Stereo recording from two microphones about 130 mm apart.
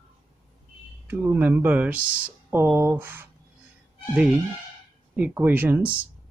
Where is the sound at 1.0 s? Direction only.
15° right (ahead or behind).